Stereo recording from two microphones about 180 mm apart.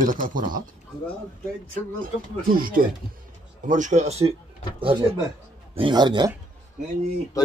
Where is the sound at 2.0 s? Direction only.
50° right (ahead or behind); by 6.3 s 25° right (ahead or behind).